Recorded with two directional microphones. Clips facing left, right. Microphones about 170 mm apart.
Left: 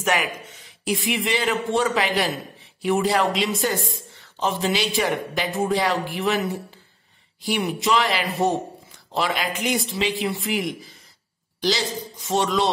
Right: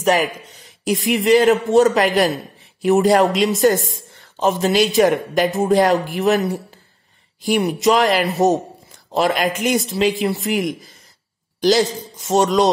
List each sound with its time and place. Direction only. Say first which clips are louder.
0.0 s a man's voice: right 6 dB; 35° right (ahead or behind)